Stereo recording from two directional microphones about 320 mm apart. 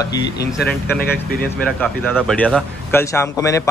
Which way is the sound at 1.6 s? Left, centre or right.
Centre.